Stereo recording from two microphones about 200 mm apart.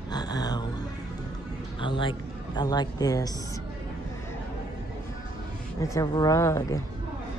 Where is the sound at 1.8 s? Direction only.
25° left (ahead or behind).